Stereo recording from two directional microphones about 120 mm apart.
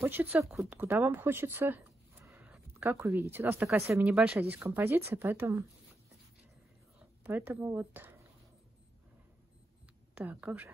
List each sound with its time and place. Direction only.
0.0 s speech: 15° right (ahead or behind)
4.0 s speech: 10° right (ahead or behind)
7.2 s speech: 15° right (ahead or behind)
10.1 s speech: 15° right (ahead or behind)